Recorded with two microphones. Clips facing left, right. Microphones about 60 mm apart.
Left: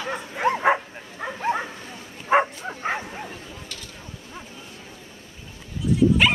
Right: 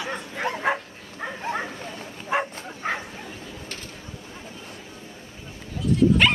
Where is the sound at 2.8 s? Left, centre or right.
Centre.